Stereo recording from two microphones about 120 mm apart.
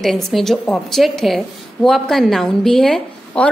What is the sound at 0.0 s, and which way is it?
A woman's voice, 5° left (ahead or behind).